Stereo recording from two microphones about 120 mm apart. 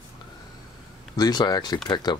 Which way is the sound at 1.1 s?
35° left (ahead or behind).